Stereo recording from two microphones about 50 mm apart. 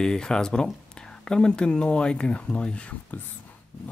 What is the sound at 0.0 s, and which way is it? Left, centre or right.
Speech, centre.